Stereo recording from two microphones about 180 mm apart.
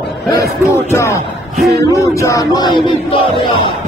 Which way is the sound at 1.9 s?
15° left (ahead or behind).